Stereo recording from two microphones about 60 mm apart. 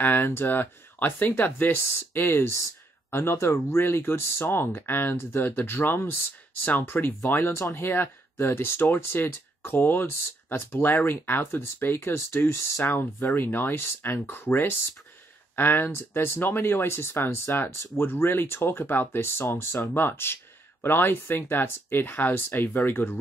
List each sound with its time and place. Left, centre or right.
0.0 s speech: left
7.5 s speech: left
7.9 s speech: left
13.4 s speech: left